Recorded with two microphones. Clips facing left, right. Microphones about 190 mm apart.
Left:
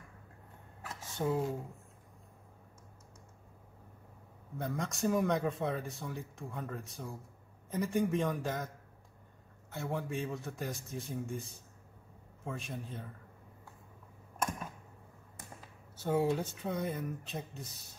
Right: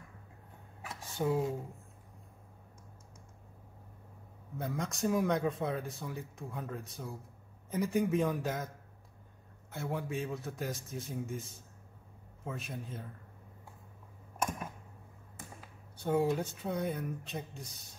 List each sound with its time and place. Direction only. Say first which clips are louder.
0.8 s a sound: right 1 dB; centre (ahead or behind)
4.6 s speech: even; centre (ahead or behind)
9.7 s speech: even; centre (ahead or behind)
16.0 s speech: right 1 dB; centre (ahead or behind)